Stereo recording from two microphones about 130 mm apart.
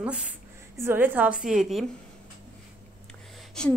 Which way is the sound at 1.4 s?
5° right (ahead or behind).